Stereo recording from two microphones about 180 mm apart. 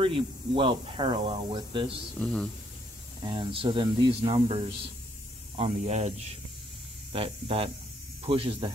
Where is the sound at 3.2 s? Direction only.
30° right (ahead or behind).